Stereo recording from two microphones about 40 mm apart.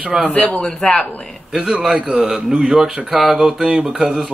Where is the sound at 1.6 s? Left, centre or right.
Right.